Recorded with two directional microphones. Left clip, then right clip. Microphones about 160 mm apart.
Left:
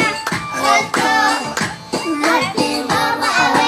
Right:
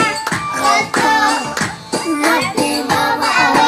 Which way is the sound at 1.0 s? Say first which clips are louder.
Right 3 dB; 10° right (ahead or behind).